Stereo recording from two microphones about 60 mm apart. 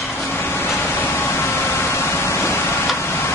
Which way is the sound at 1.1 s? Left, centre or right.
Left.